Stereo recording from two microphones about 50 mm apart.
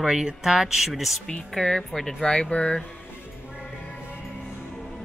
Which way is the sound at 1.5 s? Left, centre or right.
Centre.